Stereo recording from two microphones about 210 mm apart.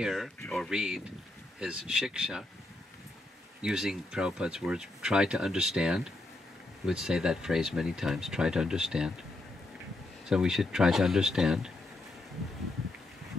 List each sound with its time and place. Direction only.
0.0 s speech: centre (ahead or behind)
3.6 s speech: centre (ahead or behind)
10.2 s speech: 5° right (ahead or behind)